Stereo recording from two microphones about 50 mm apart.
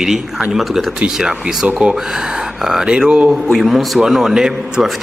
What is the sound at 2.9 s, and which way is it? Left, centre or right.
Speech, centre.